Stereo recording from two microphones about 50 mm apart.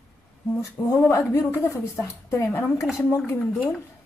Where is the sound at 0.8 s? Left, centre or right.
Left.